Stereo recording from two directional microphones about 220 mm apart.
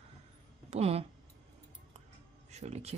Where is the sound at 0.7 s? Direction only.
30° right (ahead or behind).